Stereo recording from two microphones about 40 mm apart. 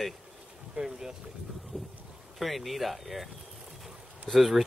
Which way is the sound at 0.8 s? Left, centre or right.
Centre.